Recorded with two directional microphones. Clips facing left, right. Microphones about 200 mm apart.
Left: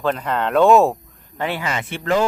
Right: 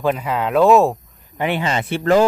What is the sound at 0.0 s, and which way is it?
Speech, 10° right (ahead or behind).